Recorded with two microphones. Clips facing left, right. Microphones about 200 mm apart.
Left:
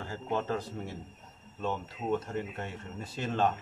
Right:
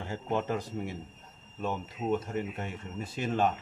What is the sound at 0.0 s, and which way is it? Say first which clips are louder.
Speech: right 2 dB; 20° right (ahead or behind).